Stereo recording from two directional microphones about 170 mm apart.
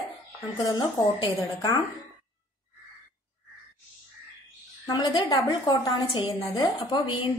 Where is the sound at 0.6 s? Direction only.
25° left (ahead or behind).